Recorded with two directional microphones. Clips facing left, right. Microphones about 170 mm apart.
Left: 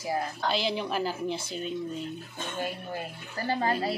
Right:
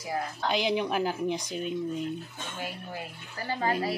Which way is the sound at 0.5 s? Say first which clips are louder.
Right 3 dB; 15° right (ahead or behind).